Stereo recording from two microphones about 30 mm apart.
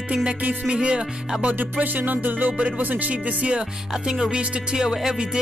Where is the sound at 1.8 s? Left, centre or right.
Right.